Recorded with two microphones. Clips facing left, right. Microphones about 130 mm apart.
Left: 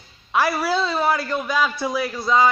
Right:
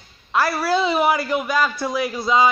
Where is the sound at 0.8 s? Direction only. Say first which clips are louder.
Right 3 dB; 15° right (ahead or behind).